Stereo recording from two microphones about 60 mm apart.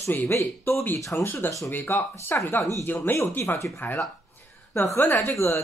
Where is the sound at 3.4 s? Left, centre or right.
Left.